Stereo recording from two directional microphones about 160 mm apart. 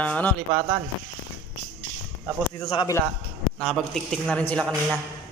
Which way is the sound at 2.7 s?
30° left (ahead or behind).